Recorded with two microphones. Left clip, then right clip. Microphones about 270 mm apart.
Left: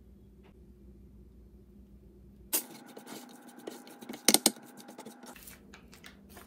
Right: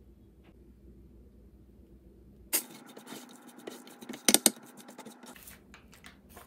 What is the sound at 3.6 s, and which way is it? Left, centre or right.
Scratch, centre.